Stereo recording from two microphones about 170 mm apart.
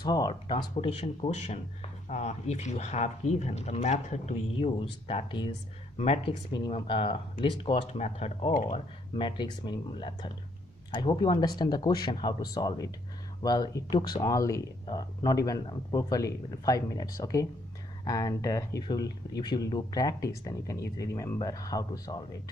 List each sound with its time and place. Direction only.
0.0 s speech: 25° left (ahead or behind)